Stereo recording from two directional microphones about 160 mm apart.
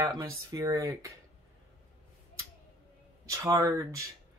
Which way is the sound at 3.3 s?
20° right (ahead or behind).